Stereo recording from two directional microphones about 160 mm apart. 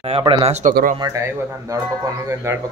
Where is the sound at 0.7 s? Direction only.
60° right (ahead or behind).